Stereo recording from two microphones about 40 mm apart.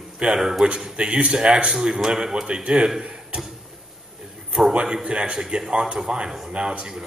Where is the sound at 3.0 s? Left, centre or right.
Right.